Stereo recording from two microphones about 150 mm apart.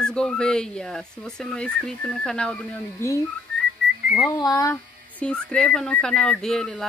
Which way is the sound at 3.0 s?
20° left (ahead or behind).